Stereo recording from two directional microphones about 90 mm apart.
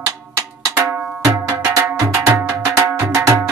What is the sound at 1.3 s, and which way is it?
Cowbell, 35° right (ahead or behind).